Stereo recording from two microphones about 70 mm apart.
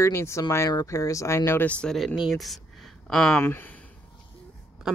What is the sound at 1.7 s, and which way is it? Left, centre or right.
Speech, centre.